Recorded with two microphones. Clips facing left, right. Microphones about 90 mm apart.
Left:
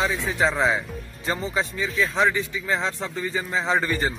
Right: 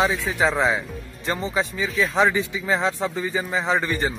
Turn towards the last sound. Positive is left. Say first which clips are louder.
# right 1 dB
turn(degrees=0)  # may be behind; listen again after turning